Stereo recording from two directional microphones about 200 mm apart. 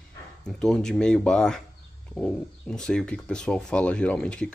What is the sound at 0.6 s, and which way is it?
Speech, 5° left (ahead or behind).